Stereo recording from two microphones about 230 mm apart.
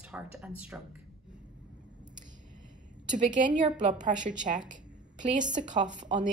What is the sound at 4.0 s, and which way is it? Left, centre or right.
A woman's voice, right.